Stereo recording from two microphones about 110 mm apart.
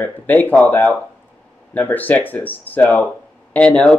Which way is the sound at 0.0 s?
15° left (ahead or behind).